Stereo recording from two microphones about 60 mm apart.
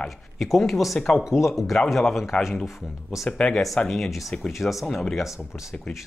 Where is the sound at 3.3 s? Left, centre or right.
Centre.